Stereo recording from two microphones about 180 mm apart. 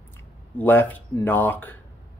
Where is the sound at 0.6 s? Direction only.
10° left (ahead or behind).